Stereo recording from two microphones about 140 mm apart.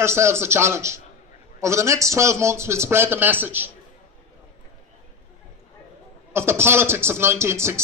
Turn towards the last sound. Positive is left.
turn(degrees=-20)  # may be behind; listen again after turning